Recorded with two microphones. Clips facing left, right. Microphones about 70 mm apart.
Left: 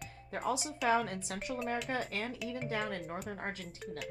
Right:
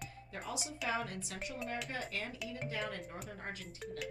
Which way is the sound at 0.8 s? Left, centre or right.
Left.